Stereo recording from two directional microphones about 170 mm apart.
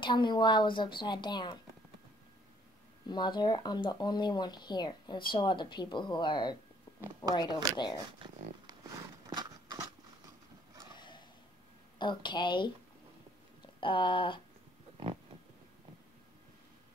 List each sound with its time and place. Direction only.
0.0 s speech: 25° left (ahead or behind)
3.1 s speech: 25° left (ahead or behind)
9.3 s a sound: 25° right (ahead or behind)
11.0 s a sound: 25° left (ahead or behind)
12.0 s speech: 25° left (ahead or behind)
13.7 s speech: 30° left (ahead or behind)